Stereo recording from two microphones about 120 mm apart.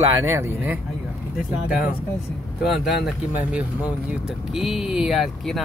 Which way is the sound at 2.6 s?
5° right (ahead or behind).